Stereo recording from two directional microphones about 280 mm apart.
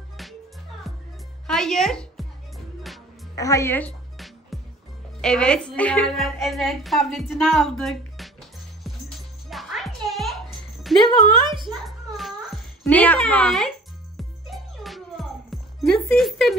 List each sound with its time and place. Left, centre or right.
0.2 s music: centre
1.5 s music: centre
3.3 s music: centre
5.2 s a woman's voice: centre
9.5 s music: centre
11.4 s speech: centre
11.8 s music: centre